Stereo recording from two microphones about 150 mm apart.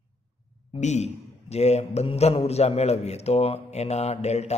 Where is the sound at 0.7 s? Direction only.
50° left (ahead or behind).